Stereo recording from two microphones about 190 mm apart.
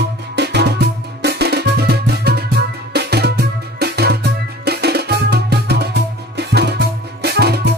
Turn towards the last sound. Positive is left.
turn(degrees=-60)  # may be behind; listen again after turning